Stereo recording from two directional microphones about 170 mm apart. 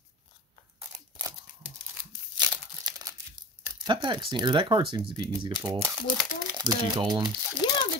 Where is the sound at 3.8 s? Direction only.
25° right (ahead or behind).